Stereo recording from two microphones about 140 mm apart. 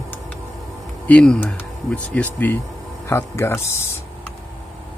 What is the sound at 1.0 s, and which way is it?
Speech, 10° left (ahead or behind).